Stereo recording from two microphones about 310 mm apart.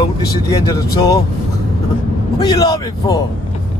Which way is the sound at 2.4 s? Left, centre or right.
Centre.